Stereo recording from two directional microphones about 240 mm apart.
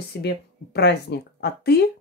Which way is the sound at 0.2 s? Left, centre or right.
Left.